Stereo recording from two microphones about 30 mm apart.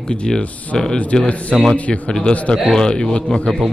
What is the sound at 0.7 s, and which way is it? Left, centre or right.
Speech, left.